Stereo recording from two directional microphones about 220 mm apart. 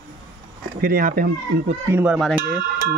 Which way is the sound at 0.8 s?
40° right (ahead or behind).